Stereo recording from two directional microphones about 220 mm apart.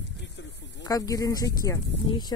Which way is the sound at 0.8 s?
15° left (ahead or behind).